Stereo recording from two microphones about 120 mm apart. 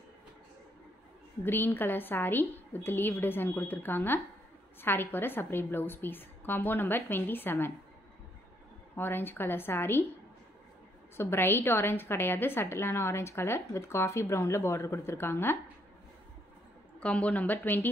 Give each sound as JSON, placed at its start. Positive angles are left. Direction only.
{"t": 1.4, "sound": "a woman's voice", "side_deg": 15}
{"t": 8.9, "sound": "a woman's voice", "side_deg": 20}
{"t": 11.1, "sound": "a woman's voice", "side_deg": 20}
{"t": 17.0, "sound": "a woman's voice", "side_deg": 10}